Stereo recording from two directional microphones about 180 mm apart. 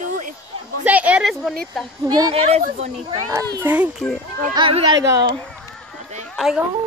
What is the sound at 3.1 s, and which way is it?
Speech, 20° right (ahead or behind).